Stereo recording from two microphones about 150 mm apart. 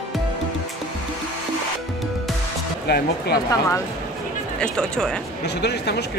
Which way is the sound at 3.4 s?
20° left (ahead or behind).